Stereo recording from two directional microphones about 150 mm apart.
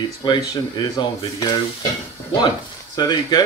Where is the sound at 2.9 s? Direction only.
25° left (ahead or behind).